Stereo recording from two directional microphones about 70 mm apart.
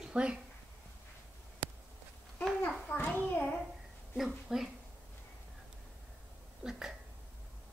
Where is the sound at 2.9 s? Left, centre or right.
Left.